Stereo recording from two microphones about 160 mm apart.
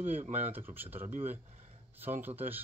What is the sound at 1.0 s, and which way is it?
Speech, 55° right (ahead or behind).